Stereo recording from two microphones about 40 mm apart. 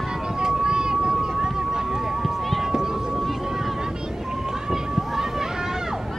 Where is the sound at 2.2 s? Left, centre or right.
Centre.